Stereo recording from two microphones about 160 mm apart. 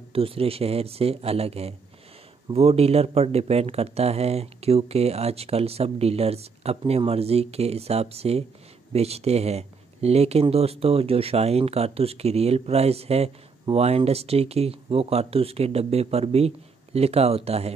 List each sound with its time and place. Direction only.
0.1 s speech: 35° right (ahead or behind)